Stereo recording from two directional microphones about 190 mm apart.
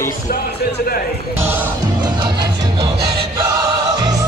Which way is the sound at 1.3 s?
10° right (ahead or behind).